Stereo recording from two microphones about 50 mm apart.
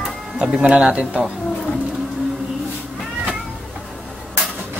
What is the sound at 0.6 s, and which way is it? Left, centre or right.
Speech, right.